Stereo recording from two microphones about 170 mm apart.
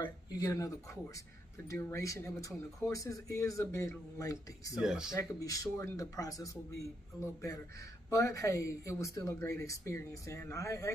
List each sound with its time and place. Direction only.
0.0 s speech: 20° left (ahead or behind)
4.7 s speech: 5° right (ahead or behind)
5.1 s speech: 20° left (ahead or behind)